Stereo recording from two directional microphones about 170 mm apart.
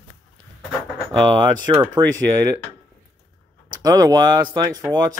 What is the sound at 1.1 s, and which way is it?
Speech, 25° right (ahead or behind).